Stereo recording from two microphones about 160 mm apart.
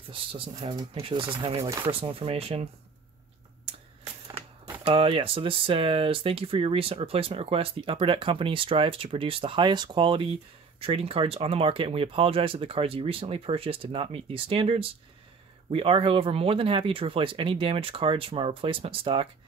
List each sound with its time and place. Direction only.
0.1 s speech: 35° right (ahead or behind)
1.6 s speech: 20° right (ahead or behind)
1.9 s speech: 35° right (ahead or behind)
4.8 s speech: 35° right (ahead or behind)